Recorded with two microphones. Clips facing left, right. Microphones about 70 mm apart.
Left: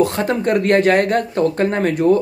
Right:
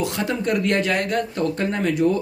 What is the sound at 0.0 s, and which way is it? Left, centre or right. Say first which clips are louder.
Speech: left 6 dB; left.